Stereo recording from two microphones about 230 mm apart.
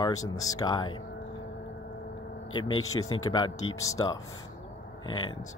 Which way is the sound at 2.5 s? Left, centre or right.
Centre.